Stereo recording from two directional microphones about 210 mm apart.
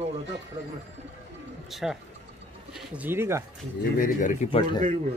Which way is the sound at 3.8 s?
40° left (ahead or behind).